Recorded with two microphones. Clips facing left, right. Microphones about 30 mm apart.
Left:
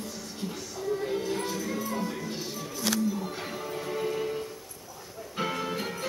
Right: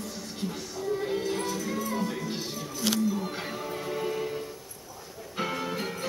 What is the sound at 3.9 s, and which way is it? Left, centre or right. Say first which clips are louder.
Music: left 1 dB; centre.